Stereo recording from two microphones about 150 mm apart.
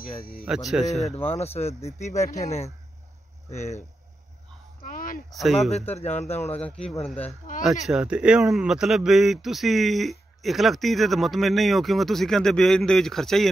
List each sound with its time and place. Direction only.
0.5 s speech: 5° right (ahead or behind)
1.3 s speech: 45° left (ahead or behind)
4.8 s speech: 70° left (ahead or behind)
5.3 s speech: centre (ahead or behind)
5.9 s speech: 45° left (ahead or behind)
7.6 s speech: centre (ahead or behind)